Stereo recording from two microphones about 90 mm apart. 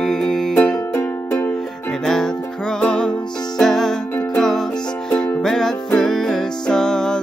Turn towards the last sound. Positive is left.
turn(degrees=5)  # may be behind; listen again after turning